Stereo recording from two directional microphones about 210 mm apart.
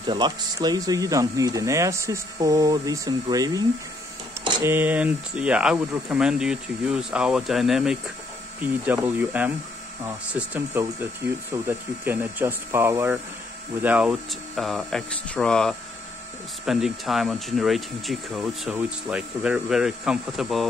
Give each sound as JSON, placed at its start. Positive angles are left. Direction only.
{"t": 0.0, "sound": "speech", "side_deg": -20}